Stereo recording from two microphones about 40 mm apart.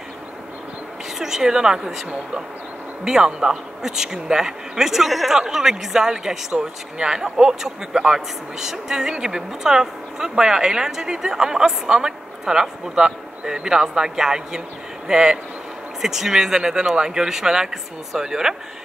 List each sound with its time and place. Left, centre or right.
1.1 s speech: centre
3.3 s speech: centre